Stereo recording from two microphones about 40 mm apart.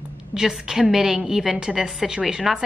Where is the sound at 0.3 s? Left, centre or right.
Centre.